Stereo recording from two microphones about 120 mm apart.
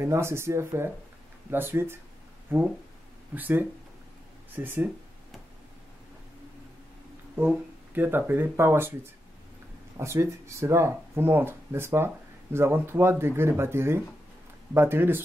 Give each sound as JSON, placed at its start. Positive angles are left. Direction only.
{"t": 0.0, "sound": "speech", "side_deg": -20}
{"t": 7.3, "sound": "speech", "side_deg": -15}
{"t": 9.9, "sound": "speech", "side_deg": -25}